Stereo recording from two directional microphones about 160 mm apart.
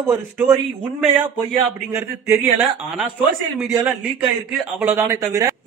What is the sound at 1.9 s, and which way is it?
Speech, 15° right (ahead or behind).